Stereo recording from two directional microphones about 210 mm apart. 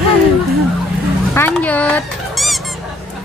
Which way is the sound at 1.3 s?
10° left (ahead or behind).